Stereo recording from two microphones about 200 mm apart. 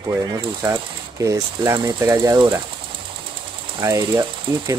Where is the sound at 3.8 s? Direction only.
15° right (ahead or behind).